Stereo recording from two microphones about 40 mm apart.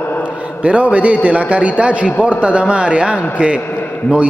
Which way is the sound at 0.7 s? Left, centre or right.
Right.